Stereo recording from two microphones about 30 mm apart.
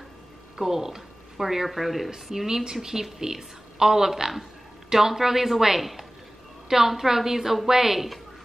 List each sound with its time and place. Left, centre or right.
0.6 s a woman's voice: centre